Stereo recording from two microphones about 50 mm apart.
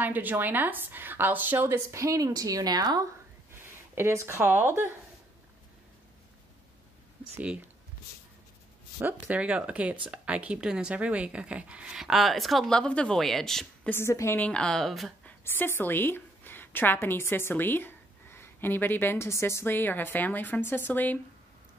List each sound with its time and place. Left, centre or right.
0.0 s a woman's voice: right
1.7 s speech: right
3.9 s speech: right
9.4 s speech: right
12.0 s speech: centre
12.6 s speech: centre
13.2 s speech: centre
13.9 s a woman's voice: left
14.5 s speech: centre
14.8 s speech: centre
15.4 s a woman's voice: left
19.2 s a woman's voice: left
19.6 s a woman's voice: left